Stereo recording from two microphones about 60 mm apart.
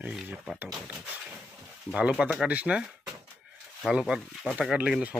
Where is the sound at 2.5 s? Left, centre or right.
Right.